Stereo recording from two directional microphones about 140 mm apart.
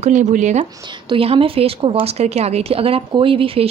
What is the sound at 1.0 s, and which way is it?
A woman's voice, 40° right (ahead or behind).